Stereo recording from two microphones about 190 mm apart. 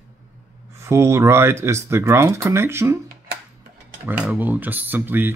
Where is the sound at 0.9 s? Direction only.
15° right (ahead or behind).